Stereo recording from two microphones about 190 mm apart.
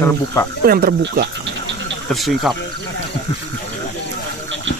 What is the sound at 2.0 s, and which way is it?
Speech, centre (ahead or behind).